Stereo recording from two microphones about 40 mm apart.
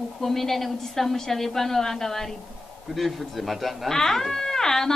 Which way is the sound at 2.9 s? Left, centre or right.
Centre.